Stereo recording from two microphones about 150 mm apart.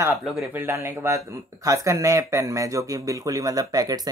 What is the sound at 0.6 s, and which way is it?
Speech, 15° right (ahead or behind).